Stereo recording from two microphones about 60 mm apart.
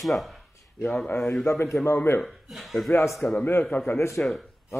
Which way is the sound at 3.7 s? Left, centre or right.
Left.